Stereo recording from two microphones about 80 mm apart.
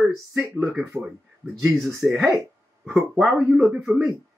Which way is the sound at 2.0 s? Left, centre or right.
Centre.